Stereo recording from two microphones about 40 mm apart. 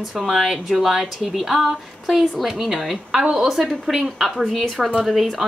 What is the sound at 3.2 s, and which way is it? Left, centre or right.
Speech, right.